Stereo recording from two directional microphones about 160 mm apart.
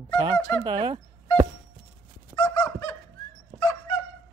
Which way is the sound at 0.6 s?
30° right (ahead or behind).